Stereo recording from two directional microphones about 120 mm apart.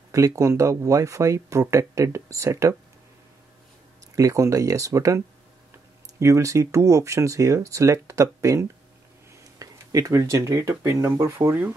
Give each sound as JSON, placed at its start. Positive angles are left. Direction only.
{"t": 0.1, "sound": "speech", "side_deg": -25}
{"t": 4.1, "sound": "speech", "side_deg": -25}